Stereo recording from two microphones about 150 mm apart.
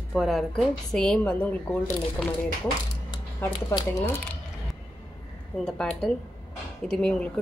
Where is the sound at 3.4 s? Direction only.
15° left (ahead or behind).